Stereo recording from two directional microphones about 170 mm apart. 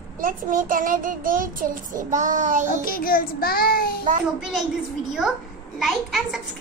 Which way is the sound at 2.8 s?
60° left (ahead or behind).